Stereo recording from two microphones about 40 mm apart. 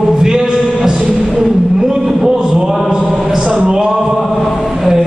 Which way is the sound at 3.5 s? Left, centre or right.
Centre.